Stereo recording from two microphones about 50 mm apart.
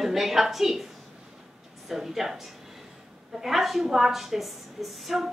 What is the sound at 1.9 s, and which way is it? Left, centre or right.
A woman's voice, centre.